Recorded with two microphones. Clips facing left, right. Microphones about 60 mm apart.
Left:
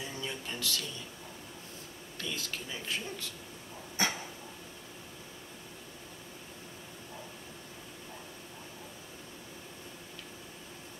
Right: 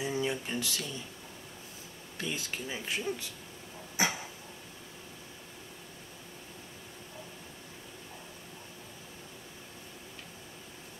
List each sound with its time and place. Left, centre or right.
0.0 s a sound: centre
2.1 s speech: right
3.9 s dog: centre